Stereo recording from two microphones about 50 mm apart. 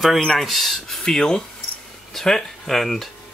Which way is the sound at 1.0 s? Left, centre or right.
Centre.